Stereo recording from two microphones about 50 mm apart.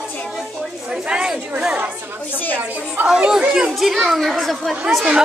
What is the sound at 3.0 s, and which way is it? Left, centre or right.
Speech, right.